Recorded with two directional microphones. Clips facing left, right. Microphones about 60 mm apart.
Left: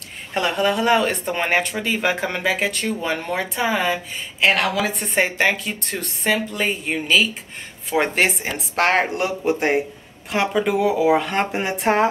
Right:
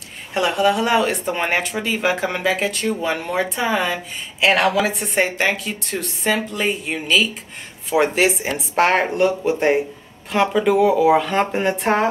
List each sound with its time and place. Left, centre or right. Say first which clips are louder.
0.3 s speech: right 2 dB; centre
4.5 s a woman's voice: right 3 dB; right
4.8 s speech: right 1 dB; centre